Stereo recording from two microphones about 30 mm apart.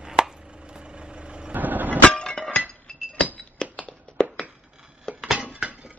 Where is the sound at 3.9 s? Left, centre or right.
Left.